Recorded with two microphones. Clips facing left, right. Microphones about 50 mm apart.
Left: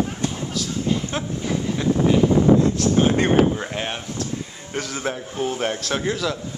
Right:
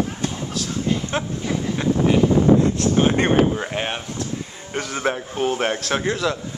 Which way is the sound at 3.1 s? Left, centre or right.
Centre.